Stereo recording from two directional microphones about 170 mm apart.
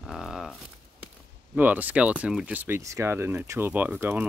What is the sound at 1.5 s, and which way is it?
Speech, 10° right (ahead or behind).